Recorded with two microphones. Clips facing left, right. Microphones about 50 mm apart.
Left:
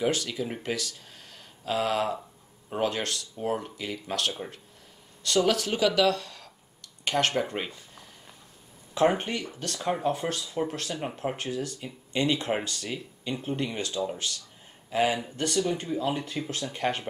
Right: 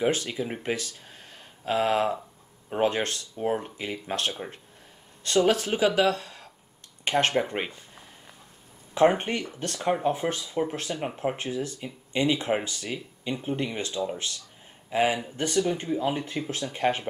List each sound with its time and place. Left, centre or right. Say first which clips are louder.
0.0 s speech: right 2 dB; right
3.3 s speech: right 3 dB; right
8.9 s speech: right 3 dB; centre
9.2 s speech: right 2 dB; right
9.9 s speech: right 2 dB; centre
11.8 s speech: right 2 dB; centre
13.7 s speech: right 1 dB; right
14.9 s speech: right 1 dB; centre